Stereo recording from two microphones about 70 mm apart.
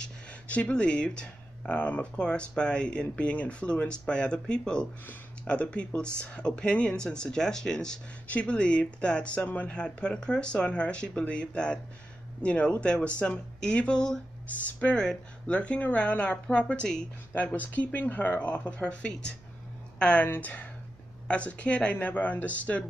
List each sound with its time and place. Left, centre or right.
0.0 s speech: centre
17.3 s speech: left